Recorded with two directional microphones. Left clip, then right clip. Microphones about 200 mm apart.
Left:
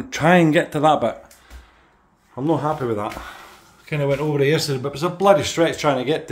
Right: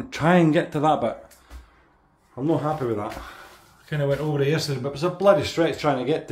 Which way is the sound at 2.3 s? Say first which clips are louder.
Left 3 dB; 25° left (ahead or behind).